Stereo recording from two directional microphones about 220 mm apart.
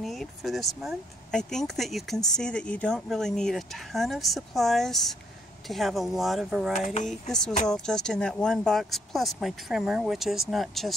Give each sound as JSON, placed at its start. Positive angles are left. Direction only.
{"t": 0.0, "sound": "speech", "side_deg": 0}
{"t": 6.7, "sound": "speech", "side_deg": 35}
{"t": 7.1, "sound": "speech", "side_deg": 0}